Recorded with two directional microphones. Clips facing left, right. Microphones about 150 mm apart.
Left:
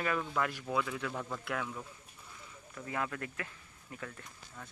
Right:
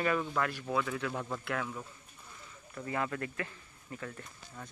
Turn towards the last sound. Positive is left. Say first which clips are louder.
# right 2 dB
turn(degrees=-10)  # may be behind; listen again after turning